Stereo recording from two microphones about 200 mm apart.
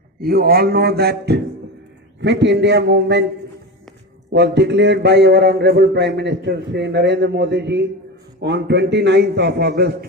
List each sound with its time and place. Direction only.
0.2 s a man's voice: 50° right (ahead or behind)
4.3 s a man's voice: 60° right (ahead or behind)